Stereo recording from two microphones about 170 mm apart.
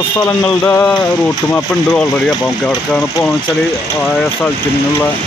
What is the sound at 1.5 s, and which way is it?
Speech, 5° left (ahead or behind).